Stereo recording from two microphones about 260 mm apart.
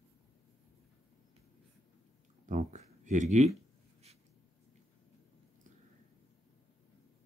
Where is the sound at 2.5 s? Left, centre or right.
Right.